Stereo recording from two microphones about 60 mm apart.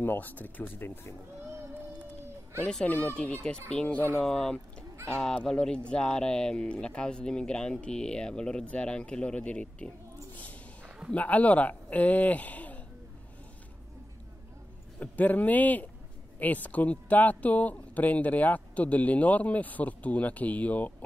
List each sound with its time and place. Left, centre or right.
0.0 s speech: left
2.6 s speech: centre
4.2 s speech: centre
10.3 s a sound: left
11.1 s speech: left
15.0 s speech: left